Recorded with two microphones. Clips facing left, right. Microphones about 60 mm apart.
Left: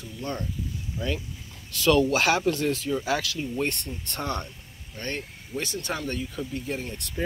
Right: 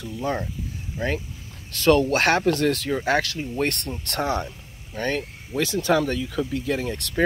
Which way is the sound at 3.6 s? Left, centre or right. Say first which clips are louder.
Right 7 dB; right.